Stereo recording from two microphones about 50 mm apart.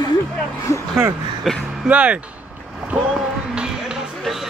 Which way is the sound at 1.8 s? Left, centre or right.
Right.